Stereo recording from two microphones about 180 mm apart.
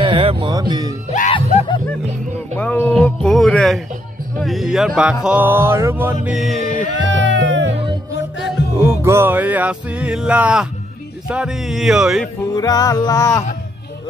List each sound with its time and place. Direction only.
0.0 s speech: 30° right (ahead or behind)
1.3 s music: 30° left (ahead or behind)
2.5 s speech: 10° left (ahead or behind)
5.2 s music: 10° right (ahead or behind)
6.2 s speech: centre (ahead or behind)
6.9 s music: 90° right
8.8 s music: 15° right (ahead or behind)
11.2 s speech: 5° right (ahead or behind)
12.5 s music: 20° left (ahead or behind)